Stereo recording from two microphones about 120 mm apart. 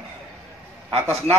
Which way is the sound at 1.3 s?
65° right (ahead or behind).